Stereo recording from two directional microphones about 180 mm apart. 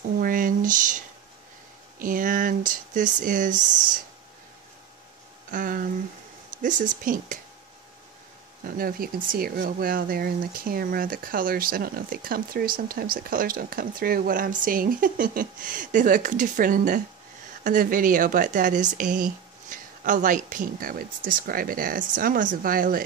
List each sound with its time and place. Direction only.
0.2 s speech: 50° right (ahead or behind)
5.5 s speech: 50° right (ahead or behind)
8.6 s speech: 55° right (ahead or behind)